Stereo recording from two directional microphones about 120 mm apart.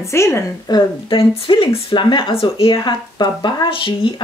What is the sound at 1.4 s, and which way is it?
Speech, 50° left (ahead or behind).